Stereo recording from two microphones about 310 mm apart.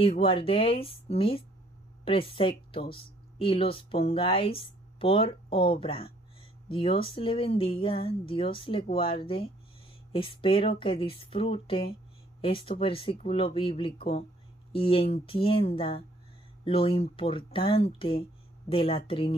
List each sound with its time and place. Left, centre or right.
0.0 s speech: centre